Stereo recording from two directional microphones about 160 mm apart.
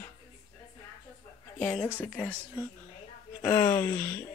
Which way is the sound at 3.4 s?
20° left (ahead or behind).